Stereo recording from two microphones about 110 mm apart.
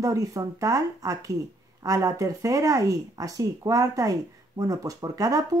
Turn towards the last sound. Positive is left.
turn(degrees=-35)  # may be behind; listen again after turning